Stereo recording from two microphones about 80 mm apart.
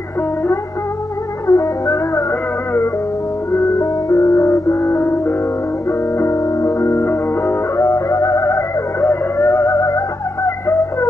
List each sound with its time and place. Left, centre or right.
1.5 s music: left
3.5 s music: left